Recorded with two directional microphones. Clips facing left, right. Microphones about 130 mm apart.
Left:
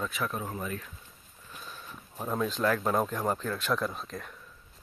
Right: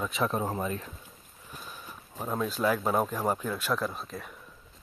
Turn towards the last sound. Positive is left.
turn(degrees=-5)  # may be behind; listen again after turning